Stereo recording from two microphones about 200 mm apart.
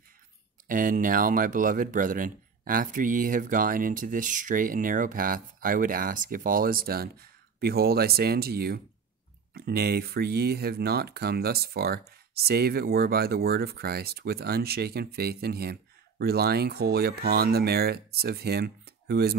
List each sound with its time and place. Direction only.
0.7 s speech: 40° right (ahead or behind)